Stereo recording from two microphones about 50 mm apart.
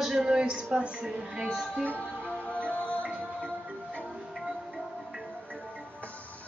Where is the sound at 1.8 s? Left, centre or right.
Left.